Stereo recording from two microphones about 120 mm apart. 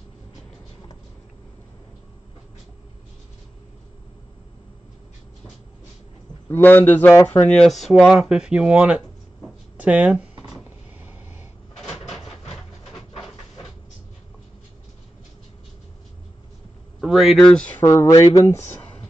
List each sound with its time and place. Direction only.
6.5 s a man's voice: 15° left (ahead or behind); by 10.2 s 15° right (ahead or behind)
11.7 s cupboard open or close: 5° left (ahead or behind)
17.0 s speech: 5° right (ahead or behind)
17.5 s speech: 10° left (ahead or behind)